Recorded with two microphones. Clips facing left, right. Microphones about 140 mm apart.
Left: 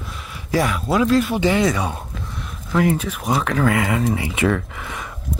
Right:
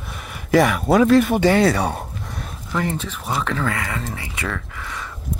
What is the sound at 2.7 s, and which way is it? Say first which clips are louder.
Speech: left 5 dB; 10° left (ahead or behind).